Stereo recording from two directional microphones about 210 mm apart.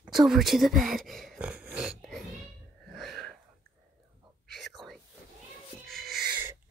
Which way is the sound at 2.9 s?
Centre (ahead or behind).